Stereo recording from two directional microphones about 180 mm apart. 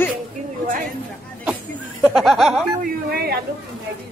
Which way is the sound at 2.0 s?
Centre (ahead or behind).